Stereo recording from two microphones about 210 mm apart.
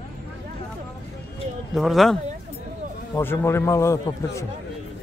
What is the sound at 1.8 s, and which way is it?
Speech, centre (ahead or behind).